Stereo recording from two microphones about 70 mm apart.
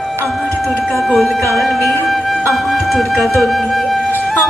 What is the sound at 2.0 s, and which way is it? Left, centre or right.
Music, centre.